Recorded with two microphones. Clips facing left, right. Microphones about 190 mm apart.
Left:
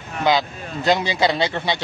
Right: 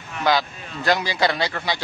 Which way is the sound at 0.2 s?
20° left (ahead or behind).